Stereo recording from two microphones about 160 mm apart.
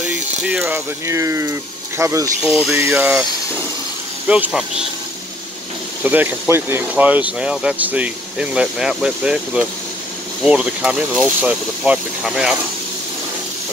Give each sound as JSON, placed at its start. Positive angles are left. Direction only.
{"t": 0.0, "sound": "speech", "side_deg": -10}
{"t": 2.4, "sound": "speech", "side_deg": -5}
{"t": 4.3, "sound": "speech", "side_deg": -5}
{"t": 6.0, "sound": "speech", "side_deg": -10}